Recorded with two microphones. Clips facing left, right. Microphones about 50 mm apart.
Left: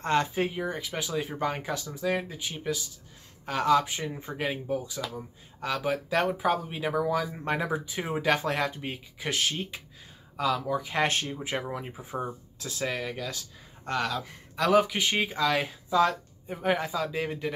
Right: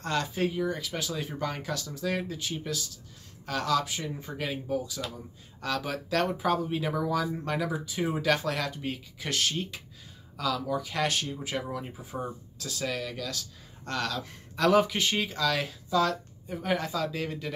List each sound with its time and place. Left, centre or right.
0.0 s speech: left
7.4 s speech: left